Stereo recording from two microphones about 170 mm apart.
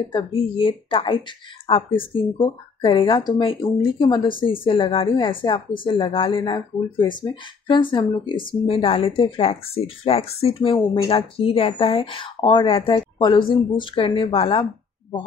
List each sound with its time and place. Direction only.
0.1 s speech: 30° left (ahead or behind)